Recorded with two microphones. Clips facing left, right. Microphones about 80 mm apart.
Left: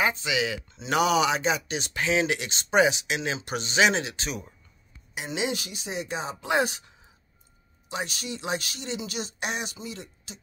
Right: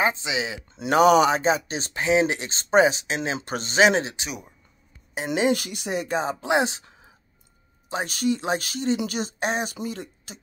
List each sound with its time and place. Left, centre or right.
0.0 s speech: right
0.7 s speech: right
4.2 s speech: centre
5.1 s speech: right
6.4 s speech: right
7.9 s speech: right